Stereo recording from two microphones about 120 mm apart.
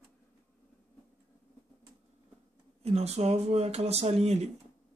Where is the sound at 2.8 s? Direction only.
60° right (ahead or behind).